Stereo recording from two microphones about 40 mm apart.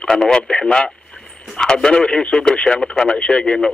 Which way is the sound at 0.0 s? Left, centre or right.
Left.